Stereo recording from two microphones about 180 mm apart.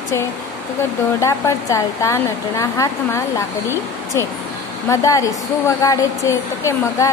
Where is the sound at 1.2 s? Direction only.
15° left (ahead or behind).